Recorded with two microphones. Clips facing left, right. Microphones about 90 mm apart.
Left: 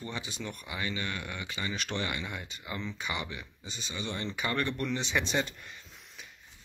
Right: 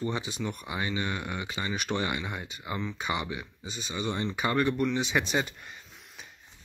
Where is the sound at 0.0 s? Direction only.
20° right (ahead or behind).